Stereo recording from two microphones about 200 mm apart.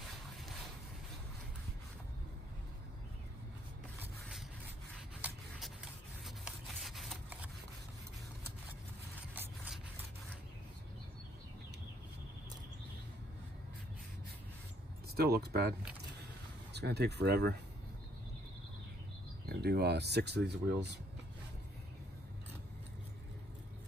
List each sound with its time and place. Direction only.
6.2 s a sound: centre (ahead or behind)
9.3 s rub: 10° right (ahead or behind)
15.1 s speech: 50° right (ahead or behind)
16.7 s speech: 55° right (ahead or behind)
19.5 s speech: 55° right (ahead or behind)